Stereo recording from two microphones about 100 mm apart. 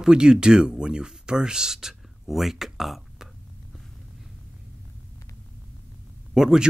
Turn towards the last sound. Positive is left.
turn(degrees=-5)  # may be behind; listen again after turning